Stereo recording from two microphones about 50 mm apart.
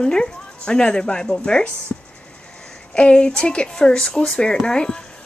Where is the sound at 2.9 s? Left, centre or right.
Left.